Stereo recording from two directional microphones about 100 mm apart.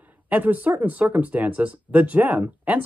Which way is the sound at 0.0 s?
15° right (ahead or behind).